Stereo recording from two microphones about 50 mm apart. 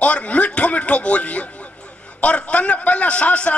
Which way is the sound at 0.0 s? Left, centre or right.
Left.